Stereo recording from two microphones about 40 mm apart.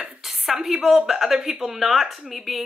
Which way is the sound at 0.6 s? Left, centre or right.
Centre.